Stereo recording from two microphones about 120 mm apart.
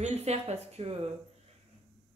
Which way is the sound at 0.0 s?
65° right (ahead or behind).